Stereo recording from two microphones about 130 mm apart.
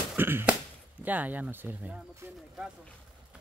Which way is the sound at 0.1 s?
15° right (ahead or behind).